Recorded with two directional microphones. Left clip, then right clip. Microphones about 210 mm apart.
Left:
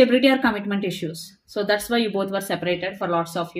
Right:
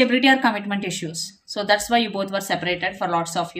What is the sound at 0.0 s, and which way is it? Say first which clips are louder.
Speech: even; 25° right (ahead or behind).